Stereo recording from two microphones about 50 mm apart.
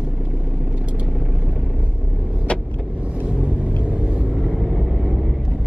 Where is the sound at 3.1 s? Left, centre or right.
Right.